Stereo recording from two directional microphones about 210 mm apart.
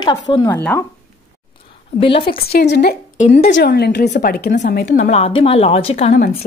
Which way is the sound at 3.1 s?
35° left (ahead or behind).